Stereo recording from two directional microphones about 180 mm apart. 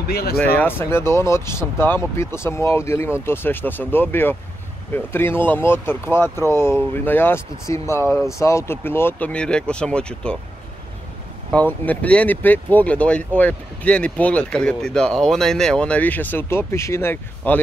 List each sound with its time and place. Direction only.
0.1 s speech: 60° left (ahead or behind)
0.4 s speech: 10° left (ahead or behind)
11.5 s speech: 10° left (ahead or behind)